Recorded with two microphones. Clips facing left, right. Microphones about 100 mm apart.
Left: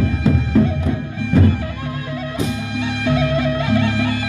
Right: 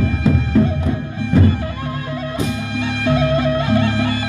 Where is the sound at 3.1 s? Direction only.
40° right (ahead or behind).